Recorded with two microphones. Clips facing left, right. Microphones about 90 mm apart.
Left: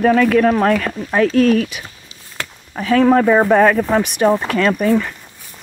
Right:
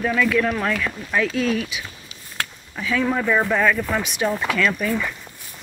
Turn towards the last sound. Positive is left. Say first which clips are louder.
# left 8 dB
turn(degrees=50)  # may be behind; listen again after turning